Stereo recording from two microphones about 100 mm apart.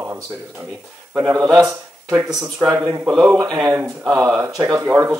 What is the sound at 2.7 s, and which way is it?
Speech, 25° right (ahead or behind).